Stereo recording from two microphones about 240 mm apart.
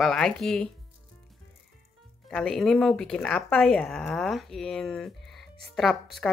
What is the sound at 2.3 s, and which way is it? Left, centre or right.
Speech, centre.